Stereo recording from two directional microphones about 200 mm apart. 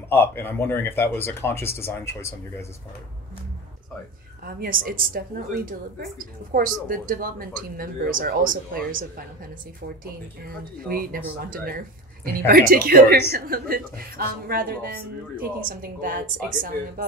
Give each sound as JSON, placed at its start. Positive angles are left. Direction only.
{"t": 0.1, "sound": "speech", "side_deg": 10}
{"t": 4.5, "sound": "a woman's voice", "side_deg": -50}
{"t": 10.8, "sound": "a woman's voice", "side_deg": -45}